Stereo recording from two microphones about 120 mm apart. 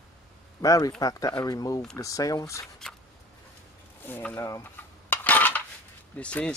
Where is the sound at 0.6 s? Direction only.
30° left (ahead or behind).